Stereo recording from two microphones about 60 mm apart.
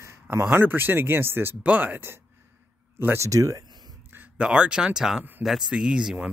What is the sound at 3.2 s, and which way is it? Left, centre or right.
Speech, right.